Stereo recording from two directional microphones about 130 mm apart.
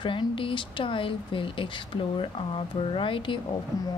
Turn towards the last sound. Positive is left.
turn(degrees=30)  # may be behind; listen again after turning